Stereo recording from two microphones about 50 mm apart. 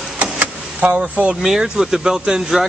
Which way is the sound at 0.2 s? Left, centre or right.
Right.